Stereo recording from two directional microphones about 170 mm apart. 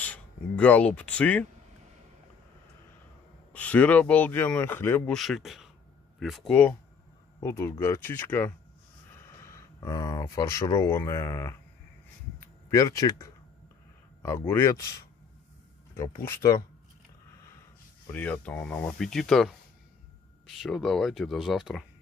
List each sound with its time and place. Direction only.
0.0 s speech: 10° left (ahead or behind)
3.5 s speech: 10° left (ahead or behind)
5.1 s speech: centre (ahead or behind)
7.3 s speech: 15° left (ahead or behind)
12.6 s speech: 20° left (ahead or behind)
16.3 s speech: 15° left (ahead or behind)
18.1 s speech: 10° left (ahead or behind)